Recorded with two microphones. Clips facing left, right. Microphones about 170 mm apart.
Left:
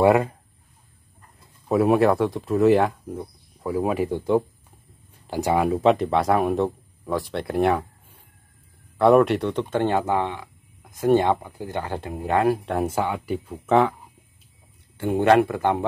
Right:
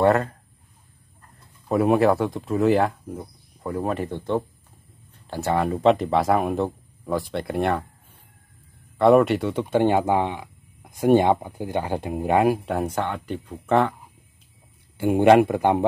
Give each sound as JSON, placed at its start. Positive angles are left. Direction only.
{"t": 0.0, "sound": "speech", "side_deg": 10}
{"t": 1.7, "sound": "speech", "side_deg": 0}
{"t": 12.6, "sound": "speech", "side_deg": 0}
{"t": 15.0, "sound": "speech", "side_deg": -15}